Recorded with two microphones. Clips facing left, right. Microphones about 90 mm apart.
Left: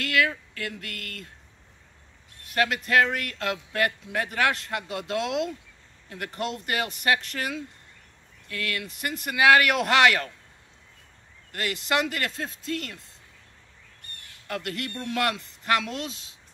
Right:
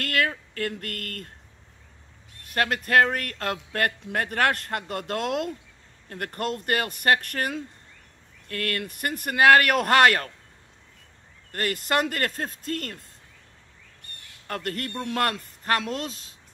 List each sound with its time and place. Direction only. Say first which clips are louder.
0.0 s speech: left 1 dB; 45° right (ahead or behind)
2.5 s speech: right 1 dB; 45° right (ahead or behind)
11.5 s speech: right 1 dB; 45° right (ahead or behind)
14.5 s speech: right 1 dB; 40° right (ahead or behind)